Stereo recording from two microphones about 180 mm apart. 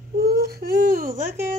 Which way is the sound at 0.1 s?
60° right (ahead or behind).